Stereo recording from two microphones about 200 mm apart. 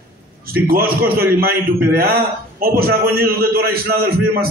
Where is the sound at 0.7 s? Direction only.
50° right (ahead or behind).